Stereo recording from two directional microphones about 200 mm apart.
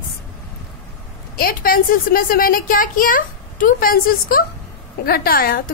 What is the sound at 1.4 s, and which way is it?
A woman's voice, 45° left (ahead or behind).